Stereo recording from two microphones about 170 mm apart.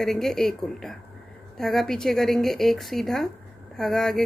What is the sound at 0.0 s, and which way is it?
A woman's voice, centre (ahead or behind).